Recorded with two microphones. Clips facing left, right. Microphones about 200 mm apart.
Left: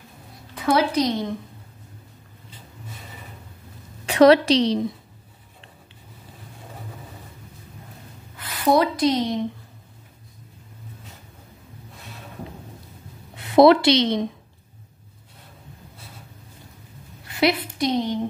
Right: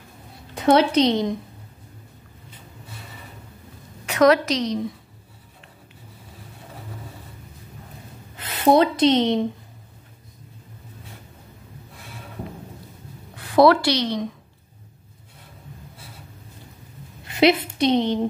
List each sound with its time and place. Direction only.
0.6 s a woman's voice: 25° right (ahead or behind)
4.0 s a woman's voice: 30° left (ahead or behind)
8.4 s a woman's voice: 25° right (ahead or behind)
13.4 s a woman's voice: 20° left (ahead or behind)
17.2 s a woman's voice: 20° right (ahead or behind)